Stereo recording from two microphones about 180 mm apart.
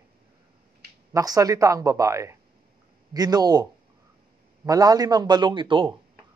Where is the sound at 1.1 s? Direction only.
20° right (ahead or behind).